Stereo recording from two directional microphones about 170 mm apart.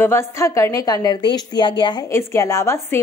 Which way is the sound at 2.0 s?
15° left (ahead or behind).